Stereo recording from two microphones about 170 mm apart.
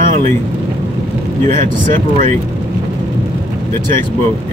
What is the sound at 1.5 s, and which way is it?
Speech, 50° right (ahead or behind).